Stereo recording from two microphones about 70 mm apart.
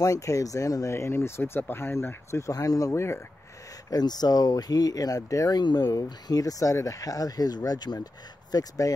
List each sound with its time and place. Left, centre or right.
0.0 s speech: left
0.9 s speech: left
2.5 s speech: left
2.9 s speech: left
3.9 s speech: left
5.6 s speech: left